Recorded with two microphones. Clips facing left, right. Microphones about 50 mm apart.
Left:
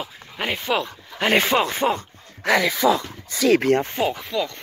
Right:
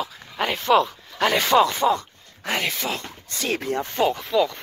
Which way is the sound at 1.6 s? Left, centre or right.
Left.